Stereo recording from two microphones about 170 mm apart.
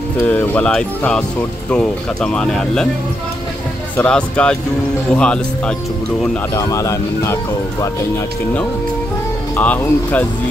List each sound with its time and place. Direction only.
0.3 s speech: 10° left (ahead or behind)
3.9 s speech: 10° left (ahead or behind)
6.5 s speech: 20° left (ahead or behind)
9.6 s speech: 10° left (ahead or behind)